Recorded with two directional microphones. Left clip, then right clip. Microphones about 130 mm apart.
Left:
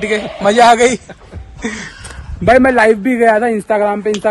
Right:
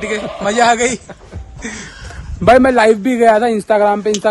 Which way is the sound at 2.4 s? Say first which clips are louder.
Even; 15° right (ahead or behind).